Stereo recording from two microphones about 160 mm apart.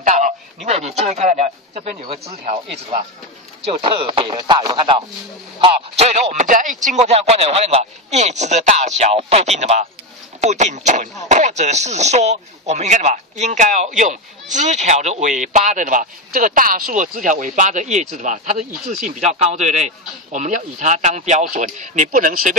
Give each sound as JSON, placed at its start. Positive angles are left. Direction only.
{"t": 0.0, "sound": "a sound", "side_deg": -50}
{"t": 0.7, "sound": "speech", "side_deg": -40}
{"t": 5.6, "sound": "speech", "side_deg": -45}